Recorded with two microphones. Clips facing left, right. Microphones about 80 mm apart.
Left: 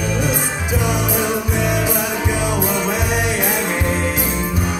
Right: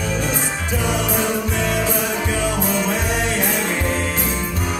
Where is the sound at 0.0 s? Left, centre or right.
Centre.